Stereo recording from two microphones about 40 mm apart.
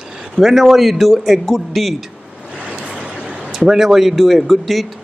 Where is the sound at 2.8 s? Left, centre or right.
Right.